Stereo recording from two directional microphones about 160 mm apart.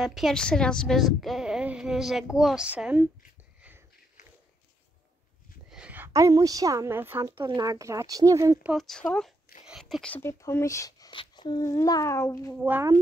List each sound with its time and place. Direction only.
0.0 s a woman's voice: centre (ahead or behind)
5.7 s a woman's voice: 10° right (ahead or behind)
7.3 s speech: 25° right (ahead or behind)
8.6 s speech: centre (ahead or behind)
9.7 s a sound: centre (ahead or behind)
10.1 s speech: 15° left (ahead or behind)
12.6 s speech: 10° right (ahead or behind)